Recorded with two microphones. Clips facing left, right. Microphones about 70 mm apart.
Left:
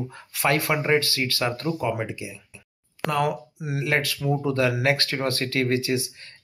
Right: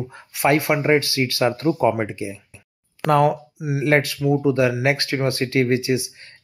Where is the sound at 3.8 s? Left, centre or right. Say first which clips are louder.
Right 7 dB; right.